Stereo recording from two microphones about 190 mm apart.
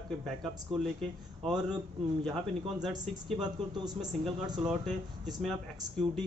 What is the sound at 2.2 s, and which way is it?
Speech, centre (ahead or behind).